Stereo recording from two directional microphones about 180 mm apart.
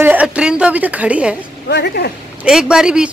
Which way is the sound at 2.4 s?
5° right (ahead or behind).